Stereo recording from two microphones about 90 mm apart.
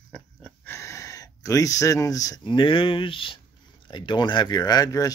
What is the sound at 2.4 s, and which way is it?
Speech, 70° left (ahead or behind).